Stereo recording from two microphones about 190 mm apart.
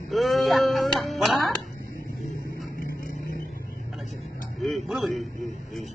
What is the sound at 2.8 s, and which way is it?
Vehicle, 50° left (ahead or behind).